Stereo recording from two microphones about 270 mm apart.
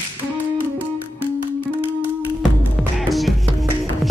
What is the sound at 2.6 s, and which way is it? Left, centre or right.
Music, centre.